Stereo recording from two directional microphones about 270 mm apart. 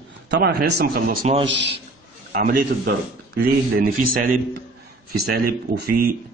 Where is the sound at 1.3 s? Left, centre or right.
Right.